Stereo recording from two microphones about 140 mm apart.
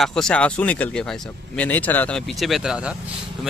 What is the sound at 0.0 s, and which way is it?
Speech, 5° left (ahead or behind).